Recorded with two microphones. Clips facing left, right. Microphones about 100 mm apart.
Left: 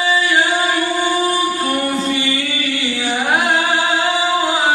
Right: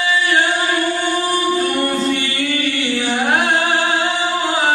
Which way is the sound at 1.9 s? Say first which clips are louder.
Even; 5° left (ahead or behind).